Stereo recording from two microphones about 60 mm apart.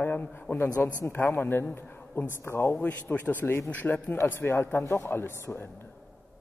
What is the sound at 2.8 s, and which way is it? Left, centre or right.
A man's voice, left.